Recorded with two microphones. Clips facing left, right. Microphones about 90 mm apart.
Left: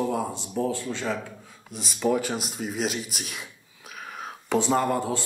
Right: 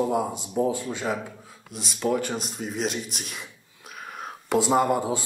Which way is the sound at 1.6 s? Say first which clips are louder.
Left 1 dB; centre (ahead or behind).